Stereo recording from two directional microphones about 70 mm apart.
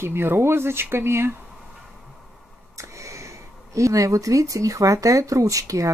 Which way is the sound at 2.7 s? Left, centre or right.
Right.